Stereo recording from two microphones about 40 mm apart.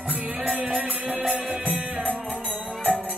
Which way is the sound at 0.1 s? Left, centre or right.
Right.